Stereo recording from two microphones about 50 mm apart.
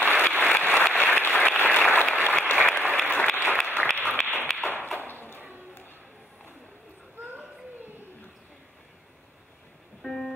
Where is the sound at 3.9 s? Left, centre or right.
Left.